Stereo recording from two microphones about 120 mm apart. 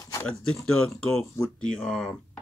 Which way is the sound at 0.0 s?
25° left (ahead or behind).